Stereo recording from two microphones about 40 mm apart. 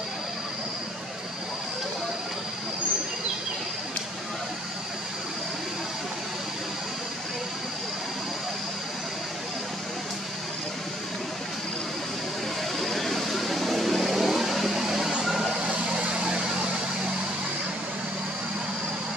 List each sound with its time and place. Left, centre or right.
12.7 s vehicle: centre
15.5 s vehicle: right